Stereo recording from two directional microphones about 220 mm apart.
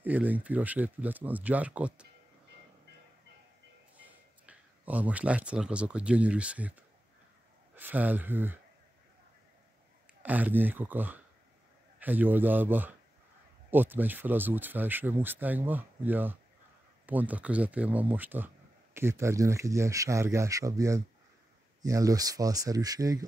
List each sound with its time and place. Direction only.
0.0 s speech: 5° right (ahead or behind)
3.9 s speech: 5° right (ahead or behind)
10.2 s speech: 5° right (ahead or behind)